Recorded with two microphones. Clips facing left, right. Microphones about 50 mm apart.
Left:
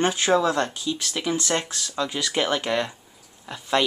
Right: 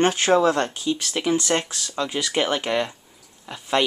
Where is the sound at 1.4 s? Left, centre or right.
Centre.